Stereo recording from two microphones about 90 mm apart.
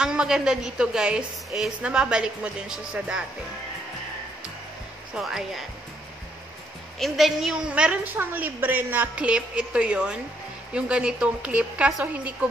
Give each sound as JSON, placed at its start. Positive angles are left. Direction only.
{"t": 0.0, "sound": "a woman's voice", "side_deg": -10}
{"t": 5.1, "sound": "speech", "side_deg": -5}
{"t": 7.0, "sound": "a woman's voice", "side_deg": 0}